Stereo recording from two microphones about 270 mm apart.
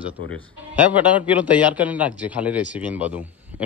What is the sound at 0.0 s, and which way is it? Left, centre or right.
A man's voice, centre.